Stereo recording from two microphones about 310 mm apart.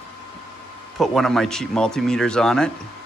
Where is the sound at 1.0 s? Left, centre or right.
Centre.